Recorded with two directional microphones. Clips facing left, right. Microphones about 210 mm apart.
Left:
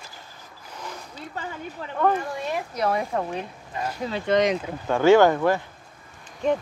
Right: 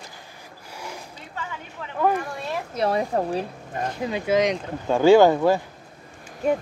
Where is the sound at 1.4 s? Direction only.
40° left (ahead or behind).